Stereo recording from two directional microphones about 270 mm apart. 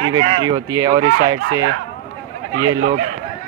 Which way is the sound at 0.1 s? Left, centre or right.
Centre.